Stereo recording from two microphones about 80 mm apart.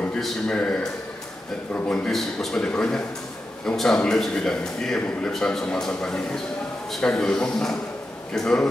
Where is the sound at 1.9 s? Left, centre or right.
Centre.